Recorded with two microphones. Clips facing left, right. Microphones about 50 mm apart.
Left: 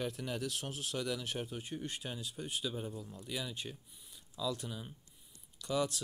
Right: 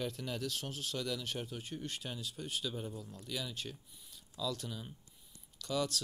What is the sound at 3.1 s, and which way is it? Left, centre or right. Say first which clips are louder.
Speech: left 1 dB; centre.